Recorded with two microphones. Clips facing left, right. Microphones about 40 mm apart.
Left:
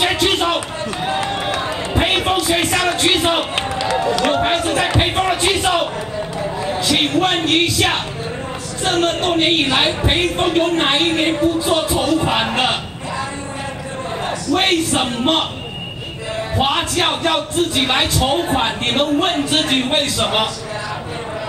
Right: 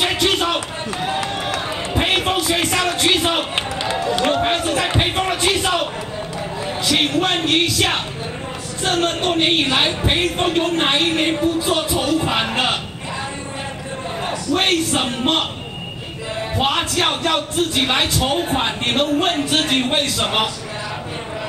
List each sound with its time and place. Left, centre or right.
0.0 s a sound: centre
2.0 s music: centre
2.4 s a sound: centre
3.5 s run: right
4.3 s run: centre
5.0 s a sound: centre
6.9 s music: centre
8.8 s a man's voice: centre
14.2 s a man's voice: centre
16.5 s a man's voice: centre